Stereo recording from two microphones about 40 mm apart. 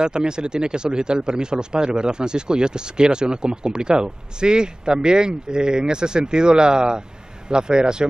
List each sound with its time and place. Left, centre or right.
0.0 s speech: right